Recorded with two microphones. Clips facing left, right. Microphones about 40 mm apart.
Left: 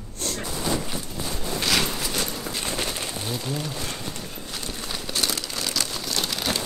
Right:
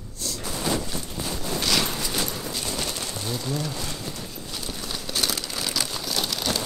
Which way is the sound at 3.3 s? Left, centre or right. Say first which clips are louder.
Right 3 dB; centre.